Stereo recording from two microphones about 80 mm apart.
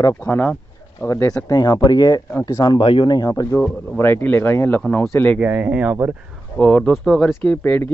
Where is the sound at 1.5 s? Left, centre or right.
Left.